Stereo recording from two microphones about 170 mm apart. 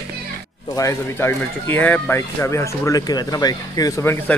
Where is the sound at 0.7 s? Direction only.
15° left (ahead or behind).